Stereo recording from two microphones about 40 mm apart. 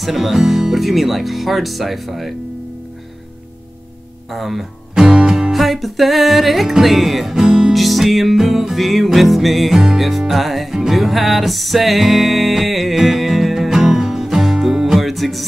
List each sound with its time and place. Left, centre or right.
0.0 s music: centre
4.3 s music: centre
4.9 s music: centre
5.5 s music: centre
7.3 s music: centre
7.7 s music: centre
14.7 s music: centre
15.0 s music: centre